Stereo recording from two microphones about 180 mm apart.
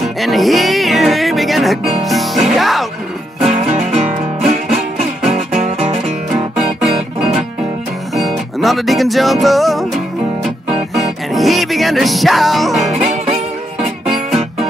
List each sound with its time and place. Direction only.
0.0 s music: centre (ahead or behind)
3.9 s music: centre (ahead or behind)
5.3 s music: 35° right (ahead or behind)
6.5 s music: 5° right (ahead or behind)
11.0 s music: centre (ahead or behind)
13.0 s music: 35° right (ahead or behind)